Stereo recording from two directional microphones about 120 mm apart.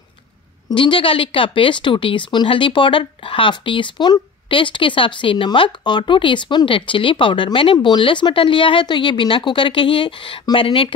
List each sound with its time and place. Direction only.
0.7 s speech: 40° left (ahead or behind)